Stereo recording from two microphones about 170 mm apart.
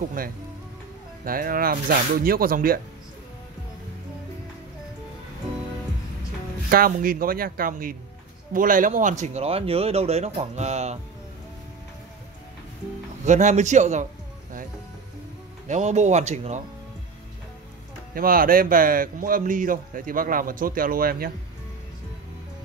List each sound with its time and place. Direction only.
0.2 s speech: 55° right (ahead or behind)
6.7 s speech: 60° right (ahead or behind); by 11.0 s 40° right (ahead or behind)
13.2 s speech: 45° right (ahead or behind)
15.7 s speech: 45° right (ahead or behind)
18.1 s speech: 60° right (ahead or behind)